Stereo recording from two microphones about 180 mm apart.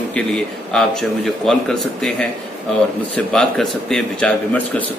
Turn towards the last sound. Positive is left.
turn(degrees=5)  # may be behind; listen again after turning